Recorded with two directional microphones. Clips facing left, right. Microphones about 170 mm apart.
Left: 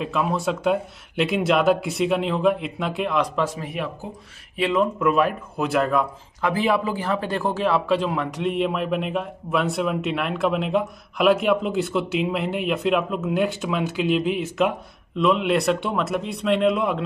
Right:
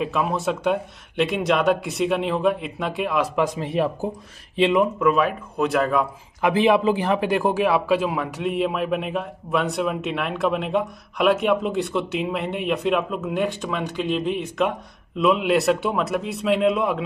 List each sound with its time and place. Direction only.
0.0 s a man's voice: centre (ahead or behind)
3.3 s a man's voice: 15° right (ahead or behind)
3.6 s a man's voice: 30° right (ahead or behind)
4.6 s speech: 20° right (ahead or behind)
5.0 s a man's voice: centre (ahead or behind)
6.4 s a man's voice: 20° right (ahead or behind); by 17.0 s centre (ahead or behind)